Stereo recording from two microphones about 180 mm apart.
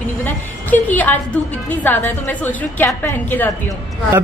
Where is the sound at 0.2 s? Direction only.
10° left (ahead or behind).